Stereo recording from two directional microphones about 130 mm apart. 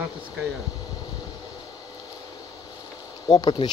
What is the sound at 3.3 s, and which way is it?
Speech, 35° left (ahead or behind).